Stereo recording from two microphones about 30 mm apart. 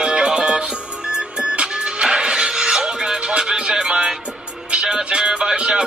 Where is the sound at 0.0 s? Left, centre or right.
Right.